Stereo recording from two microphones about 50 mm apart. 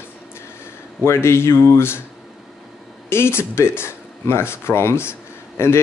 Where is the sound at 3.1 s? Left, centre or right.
Left.